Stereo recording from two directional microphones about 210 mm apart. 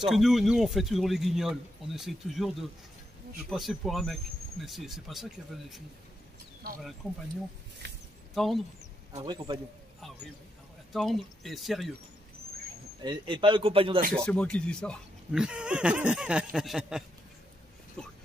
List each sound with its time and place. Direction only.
0.0 s speech: centre (ahead or behind)
8.4 s speech: centre (ahead or behind)
9.1 s a man's voice: 20° right (ahead or behind)
10.9 s speech: centre (ahead or behind)
13.0 s a man's voice: 20° right (ahead or behind)
14.2 s speech: 5° left (ahead or behind)